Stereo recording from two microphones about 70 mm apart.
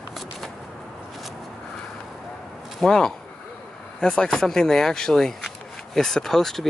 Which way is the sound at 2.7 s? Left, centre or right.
Centre.